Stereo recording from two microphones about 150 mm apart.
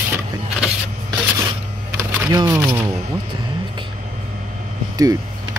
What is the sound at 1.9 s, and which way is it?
Typing, 20° right (ahead or behind).